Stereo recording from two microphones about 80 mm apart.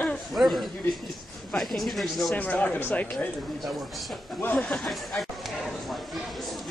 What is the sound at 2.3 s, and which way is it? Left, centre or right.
Speech, centre.